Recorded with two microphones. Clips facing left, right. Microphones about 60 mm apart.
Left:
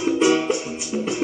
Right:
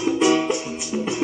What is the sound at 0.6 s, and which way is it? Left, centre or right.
Music, centre.